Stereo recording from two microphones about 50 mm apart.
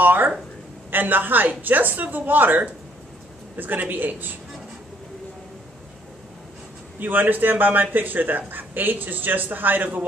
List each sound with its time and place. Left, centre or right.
0.0 s a sound: right
0.9 s a man's voice: right
7.0 s a man's voice: right